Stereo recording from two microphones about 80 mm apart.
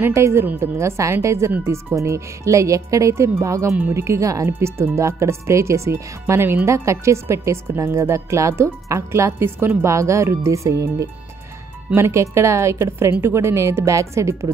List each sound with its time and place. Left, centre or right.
0.0 s speech: right